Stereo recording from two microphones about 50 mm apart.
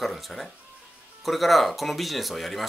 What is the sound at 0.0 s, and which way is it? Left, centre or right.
Speech, centre.